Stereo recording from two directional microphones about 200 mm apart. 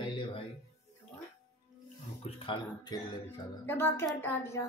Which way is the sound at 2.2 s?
25° left (ahead or behind).